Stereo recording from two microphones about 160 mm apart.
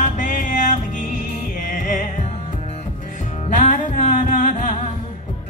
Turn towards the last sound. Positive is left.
turn(degrees=55)  # may be behind; listen again after turning